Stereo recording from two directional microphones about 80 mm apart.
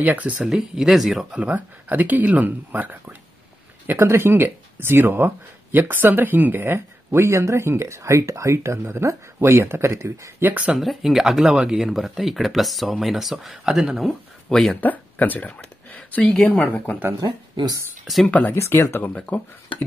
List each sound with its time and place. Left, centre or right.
0.0 s speech: right
0.4 s speech: centre
1.3 s speech: centre; by 10.5 s right
10.5 s speech: centre
10.8 s speech: centre
14.7 s speech: left
15.4 s a sound: centre
16.4 s speech: left
18.0 s speech: centre
18.5 s speech: left
19.1 s speech: centre